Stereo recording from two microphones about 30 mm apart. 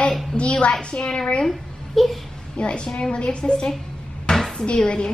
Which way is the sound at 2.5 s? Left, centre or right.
Left.